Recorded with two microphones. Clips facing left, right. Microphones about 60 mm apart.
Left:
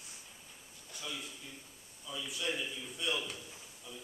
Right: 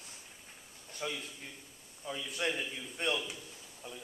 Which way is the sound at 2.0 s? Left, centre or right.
Right.